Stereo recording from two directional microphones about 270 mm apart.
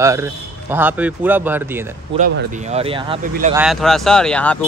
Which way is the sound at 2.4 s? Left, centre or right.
Right.